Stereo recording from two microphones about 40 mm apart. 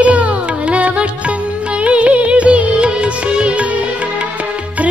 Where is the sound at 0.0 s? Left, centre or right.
Right.